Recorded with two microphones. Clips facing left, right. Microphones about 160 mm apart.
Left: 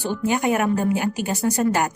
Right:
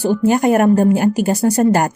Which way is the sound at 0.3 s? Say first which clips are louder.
Right 7 dB; 45° right (ahead or behind).